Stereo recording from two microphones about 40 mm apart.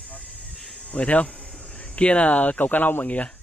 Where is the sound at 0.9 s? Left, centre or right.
Left.